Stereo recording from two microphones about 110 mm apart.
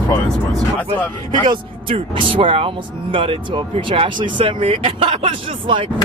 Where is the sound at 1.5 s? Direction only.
50° right (ahead or behind).